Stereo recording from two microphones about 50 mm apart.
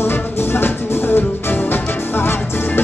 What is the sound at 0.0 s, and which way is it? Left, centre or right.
Music, left.